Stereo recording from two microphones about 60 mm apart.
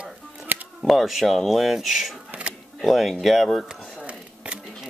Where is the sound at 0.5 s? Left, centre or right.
Right.